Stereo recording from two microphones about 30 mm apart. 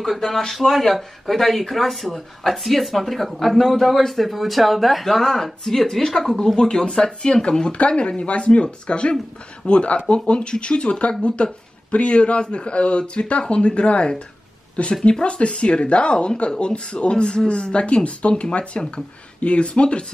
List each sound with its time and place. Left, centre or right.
0.5 s speech: centre
5.1 s speech: centre
6.6 s speech: left
17.7 s speech: left